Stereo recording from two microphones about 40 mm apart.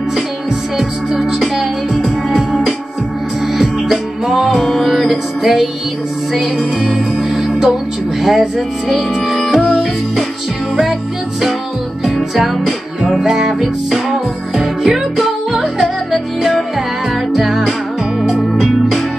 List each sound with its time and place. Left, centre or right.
2.3 s music: centre
13.0 s music: centre
18.3 s music: centre